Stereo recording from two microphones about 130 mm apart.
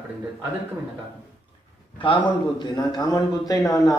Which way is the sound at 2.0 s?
40° left (ahead or behind).